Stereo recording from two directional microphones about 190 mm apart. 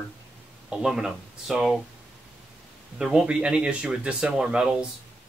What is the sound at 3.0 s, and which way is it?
Speech, 5° right (ahead or behind).